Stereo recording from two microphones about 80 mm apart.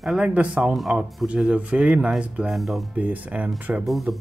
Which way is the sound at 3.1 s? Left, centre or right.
Centre.